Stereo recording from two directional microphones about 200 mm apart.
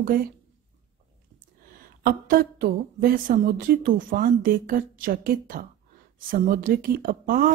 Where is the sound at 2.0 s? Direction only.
45° right (ahead or behind).